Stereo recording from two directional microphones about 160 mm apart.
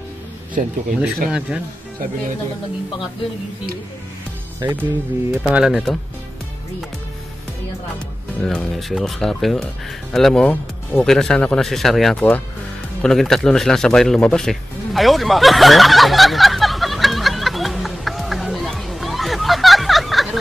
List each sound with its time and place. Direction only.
0.6 s speech: 50° right (ahead or behind)
0.9 s speech: 5° right (ahead or behind)
4.6 s speech: 15° right (ahead or behind)
8.4 s speech: 5° left (ahead or behind)
13.0 s music: centre (ahead or behind)